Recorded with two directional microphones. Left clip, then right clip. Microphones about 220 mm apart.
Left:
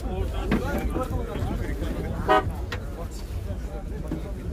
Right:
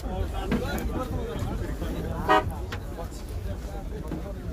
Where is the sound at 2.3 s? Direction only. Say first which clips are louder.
Left 1 dB; 55° right (ahead or behind).